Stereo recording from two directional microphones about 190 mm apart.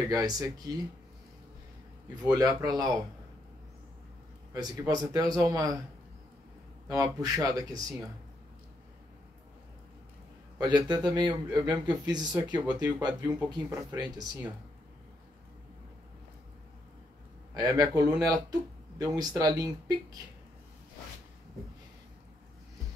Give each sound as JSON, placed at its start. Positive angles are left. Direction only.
{"t": 0.1, "sound": "speech", "side_deg": -20}
{"t": 2.2, "sound": "speech", "side_deg": -20}
{"t": 4.6, "sound": "speech", "side_deg": -20}
{"t": 6.9, "sound": "speech", "side_deg": -20}
{"t": 10.6, "sound": "speech", "side_deg": -20}
{"t": 17.6, "sound": "speech", "side_deg": -20}